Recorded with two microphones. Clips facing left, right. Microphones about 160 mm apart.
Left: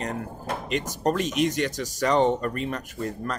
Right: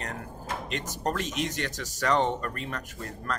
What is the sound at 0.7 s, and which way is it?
Speech, 15° left (ahead or behind).